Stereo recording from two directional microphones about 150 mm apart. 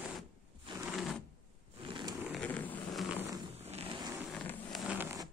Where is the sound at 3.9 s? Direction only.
25° right (ahead or behind).